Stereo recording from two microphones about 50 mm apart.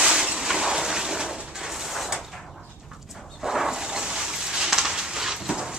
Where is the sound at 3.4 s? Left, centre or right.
Centre.